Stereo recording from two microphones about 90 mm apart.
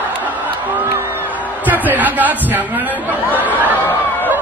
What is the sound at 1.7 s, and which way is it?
Speech, 20° right (ahead or behind).